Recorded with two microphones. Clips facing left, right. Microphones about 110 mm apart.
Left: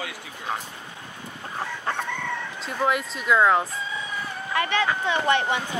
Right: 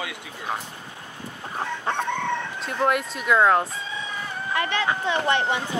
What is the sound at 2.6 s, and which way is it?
Speech, centre (ahead or behind).